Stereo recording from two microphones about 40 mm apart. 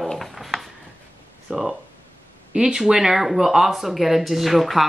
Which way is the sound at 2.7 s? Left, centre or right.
Centre.